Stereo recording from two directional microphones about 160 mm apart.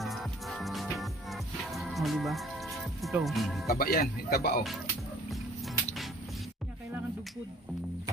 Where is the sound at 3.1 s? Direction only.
10° right (ahead or behind).